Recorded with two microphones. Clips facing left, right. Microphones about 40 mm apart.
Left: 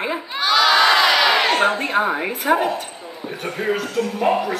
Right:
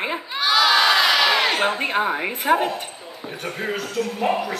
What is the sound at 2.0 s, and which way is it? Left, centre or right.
Speech, left.